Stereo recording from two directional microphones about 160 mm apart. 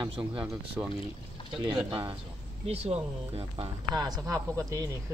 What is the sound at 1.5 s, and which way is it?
Speech, 30° right (ahead or behind).